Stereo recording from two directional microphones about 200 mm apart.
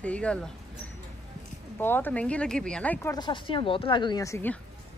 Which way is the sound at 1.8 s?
10° left (ahead or behind).